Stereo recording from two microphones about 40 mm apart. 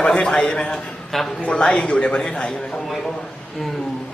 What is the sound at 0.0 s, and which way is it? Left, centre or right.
A man's voice, left.